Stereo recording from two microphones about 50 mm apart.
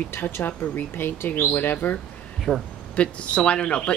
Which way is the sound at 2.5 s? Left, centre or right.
Centre.